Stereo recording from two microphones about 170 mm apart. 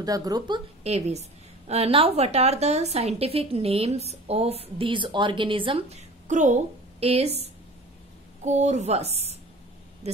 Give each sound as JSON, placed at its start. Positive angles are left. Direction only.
{"t": 0.0, "sound": "a woman's voice", "side_deg": -20}
{"t": 0.8, "sound": "a woman's voice", "side_deg": -40}
{"t": 8.5, "sound": "a woman's voice", "side_deg": -40}